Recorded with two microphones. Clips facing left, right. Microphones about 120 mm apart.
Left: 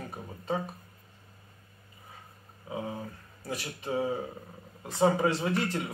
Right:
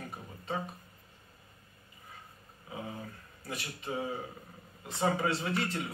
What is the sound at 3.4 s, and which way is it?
Speech, 35° left (ahead or behind).